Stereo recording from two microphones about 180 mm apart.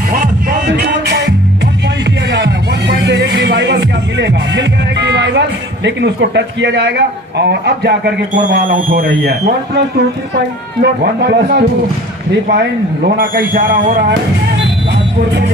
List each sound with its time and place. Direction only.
0.1 s music: 55° right (ahead or behind); by 1.3 s 70° right (ahead or behind)
3.0 s music: 75° right (ahead or behind)
5.9 s speech: 75° right (ahead or behind)
8.4 s a man's voice: 50° right (ahead or behind)